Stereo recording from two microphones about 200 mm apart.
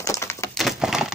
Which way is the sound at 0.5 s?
Centre (ahead or behind).